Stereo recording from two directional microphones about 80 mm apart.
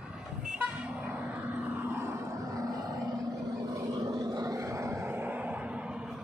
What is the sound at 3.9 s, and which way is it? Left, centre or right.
Vehicle, right.